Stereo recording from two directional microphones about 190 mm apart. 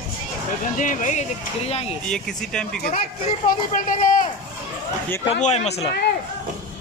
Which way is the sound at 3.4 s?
45° left (ahead or behind).